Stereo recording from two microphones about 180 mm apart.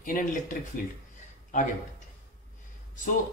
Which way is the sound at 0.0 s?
50° left (ahead or behind).